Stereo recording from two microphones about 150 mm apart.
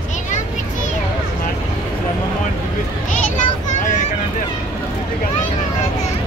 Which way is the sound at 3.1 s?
55° left (ahead or behind).